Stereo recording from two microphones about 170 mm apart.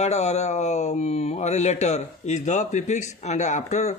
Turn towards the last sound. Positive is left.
turn(degrees=45)  # may be behind; listen again after turning